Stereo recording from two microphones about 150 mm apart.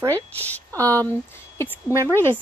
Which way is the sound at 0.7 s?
20° right (ahead or behind).